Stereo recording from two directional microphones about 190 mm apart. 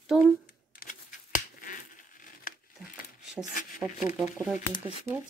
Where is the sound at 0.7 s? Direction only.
45° left (ahead or behind).